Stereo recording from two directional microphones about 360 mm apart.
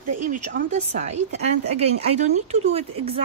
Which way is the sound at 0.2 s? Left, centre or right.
Right.